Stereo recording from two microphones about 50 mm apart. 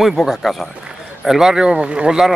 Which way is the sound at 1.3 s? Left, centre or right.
Centre.